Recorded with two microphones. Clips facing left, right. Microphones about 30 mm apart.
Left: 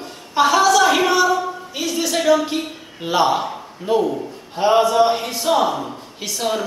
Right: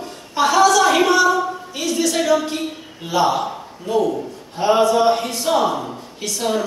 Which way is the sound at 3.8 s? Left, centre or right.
Left.